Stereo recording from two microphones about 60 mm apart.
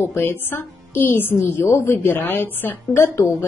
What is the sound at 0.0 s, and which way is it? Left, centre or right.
Speech, left.